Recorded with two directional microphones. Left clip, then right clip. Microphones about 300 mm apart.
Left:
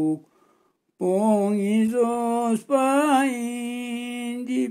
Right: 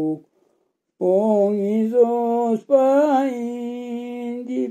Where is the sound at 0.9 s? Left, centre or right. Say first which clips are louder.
Right 4 dB; left.